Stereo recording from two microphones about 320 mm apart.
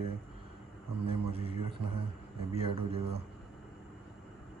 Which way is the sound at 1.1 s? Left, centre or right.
Centre.